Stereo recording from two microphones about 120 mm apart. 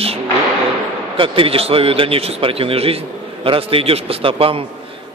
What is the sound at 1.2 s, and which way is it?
A man's voice, 50° right (ahead or behind).